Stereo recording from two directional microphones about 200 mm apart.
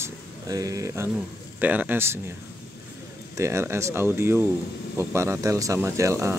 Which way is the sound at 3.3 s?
15° right (ahead or behind).